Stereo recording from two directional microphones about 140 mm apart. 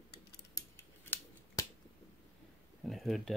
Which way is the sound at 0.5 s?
15° left (ahead or behind).